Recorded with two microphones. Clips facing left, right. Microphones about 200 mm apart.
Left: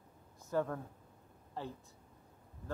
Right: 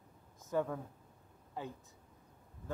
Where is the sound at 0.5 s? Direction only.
15° right (ahead or behind).